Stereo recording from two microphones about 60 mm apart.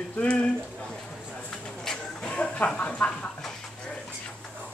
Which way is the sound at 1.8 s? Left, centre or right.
Centre.